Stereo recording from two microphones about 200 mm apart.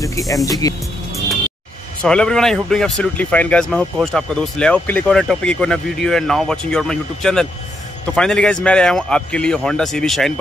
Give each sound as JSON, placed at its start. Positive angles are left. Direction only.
{"t": 0.5, "sound": "speech", "side_deg": 20}
{"t": 2.0, "sound": "speech", "side_deg": 5}